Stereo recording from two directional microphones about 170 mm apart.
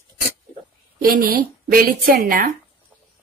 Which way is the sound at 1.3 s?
60° right (ahead or behind).